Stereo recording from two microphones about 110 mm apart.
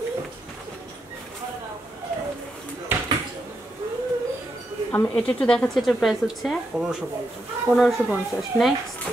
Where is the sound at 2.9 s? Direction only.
20° right (ahead or behind).